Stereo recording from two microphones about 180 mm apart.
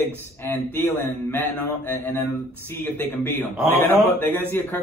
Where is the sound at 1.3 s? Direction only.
10° left (ahead or behind).